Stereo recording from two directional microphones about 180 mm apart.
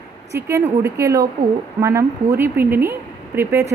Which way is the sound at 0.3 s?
15° right (ahead or behind).